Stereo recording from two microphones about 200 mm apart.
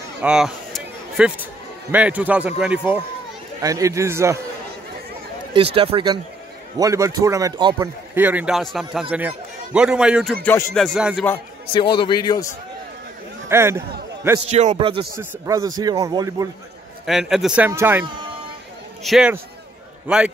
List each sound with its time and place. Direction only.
0.2 s a sound: 5° right (ahead or behind)
1.9 s a man's voice: 5° right (ahead or behind)
3.6 s a man's voice: 15° right (ahead or behind)
5.8 s a man's voice: 25° right (ahead or behind)
8.1 s a man's voice: 10° right (ahead or behind)
10.4 s a man's voice: 5° left (ahead or behind)
11.6 s a man's voice: 25° left (ahead or behind)
13.5 s a man's voice: 15° right (ahead or behind)
14.4 s a man's voice: 35° right (ahead or behind)
17.0 s a man's voice: centre (ahead or behind)
19.0 s a man's voice: 5° right (ahead or behind)